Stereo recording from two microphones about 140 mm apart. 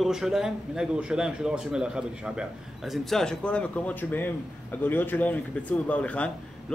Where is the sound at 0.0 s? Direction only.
5° right (ahead or behind).